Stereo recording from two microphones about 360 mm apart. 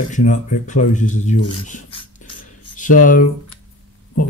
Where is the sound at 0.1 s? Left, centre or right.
Centre.